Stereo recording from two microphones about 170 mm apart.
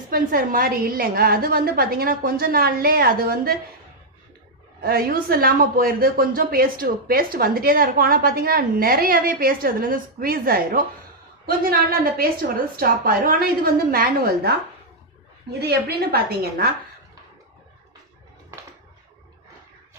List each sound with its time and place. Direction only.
0.1 s a woman's voice: 55° right (ahead or behind)
4.8 s a woman's voice: 60° right (ahead or behind)
15.6 s a woman's voice: 70° right (ahead or behind)